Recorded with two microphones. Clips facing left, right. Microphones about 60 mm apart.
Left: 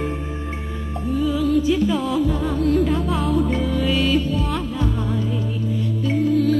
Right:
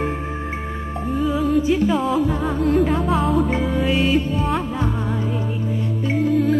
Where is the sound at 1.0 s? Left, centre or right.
Right.